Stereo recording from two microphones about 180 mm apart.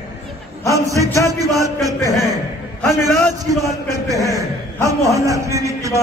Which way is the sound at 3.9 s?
20° right (ahead or behind).